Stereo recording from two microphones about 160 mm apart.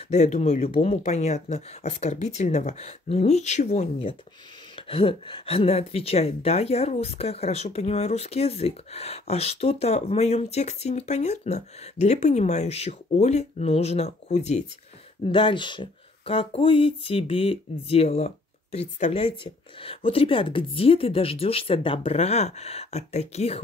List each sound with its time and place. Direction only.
0.1 s a woman's voice: 45° left (ahead or behind)
15.2 s a woman's voice: 35° left (ahead or behind)